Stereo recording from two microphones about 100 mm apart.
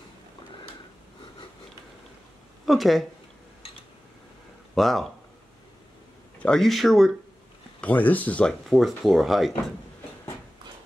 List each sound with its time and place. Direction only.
2.6 s speech: centre (ahead or behind)
4.7 s speech: centre (ahead or behind)
6.4 s speech: 5° left (ahead or behind)
7.8 s speech: 15° left (ahead or behind)
8.6 s speech: centre (ahead or behind)